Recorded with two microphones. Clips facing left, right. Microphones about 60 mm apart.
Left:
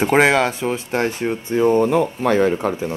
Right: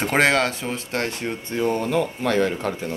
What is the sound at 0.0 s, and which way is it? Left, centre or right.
Speech, centre.